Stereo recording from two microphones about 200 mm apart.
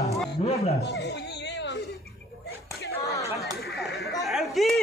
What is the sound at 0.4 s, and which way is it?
Speech, 30° left (ahead or behind).